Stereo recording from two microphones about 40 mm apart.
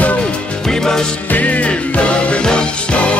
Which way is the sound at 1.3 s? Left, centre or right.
Left.